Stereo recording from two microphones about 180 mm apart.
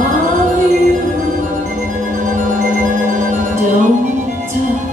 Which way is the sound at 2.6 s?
45° right (ahead or behind).